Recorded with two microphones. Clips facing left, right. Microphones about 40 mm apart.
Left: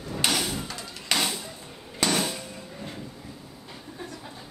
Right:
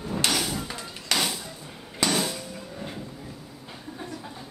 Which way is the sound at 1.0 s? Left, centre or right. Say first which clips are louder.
Even; centre.